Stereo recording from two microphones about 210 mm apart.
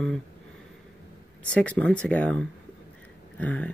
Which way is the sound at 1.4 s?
5° left (ahead or behind).